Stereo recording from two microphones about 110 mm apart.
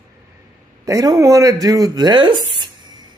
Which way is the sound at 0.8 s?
30° right (ahead or behind).